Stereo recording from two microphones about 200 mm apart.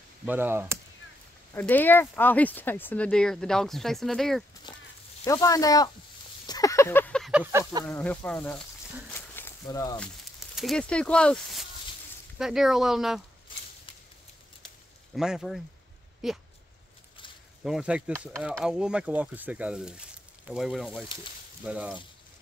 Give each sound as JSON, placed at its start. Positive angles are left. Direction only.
{"t": 0.2, "sound": "speech", "side_deg": -10}
{"t": 1.5, "sound": "speech", "side_deg": 10}
{"t": 5.2, "sound": "speech", "side_deg": 15}
{"t": 6.4, "sound": "a sound", "side_deg": 20}
{"t": 7.8, "sound": "speech", "side_deg": 10}
{"t": 9.1, "sound": "a sound", "side_deg": 10}
{"t": 9.9, "sound": "speech", "side_deg": 0}
{"t": 15.1, "sound": "speech", "side_deg": 0}
{"t": 17.6, "sound": "speech", "side_deg": -5}